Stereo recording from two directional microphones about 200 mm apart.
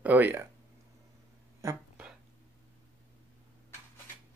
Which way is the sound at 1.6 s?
10° right (ahead or behind).